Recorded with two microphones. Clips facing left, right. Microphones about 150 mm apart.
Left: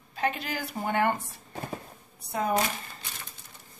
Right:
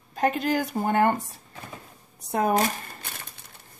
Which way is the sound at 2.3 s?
50° right (ahead or behind).